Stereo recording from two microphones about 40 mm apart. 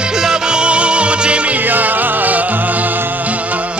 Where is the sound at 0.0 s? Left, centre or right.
Centre.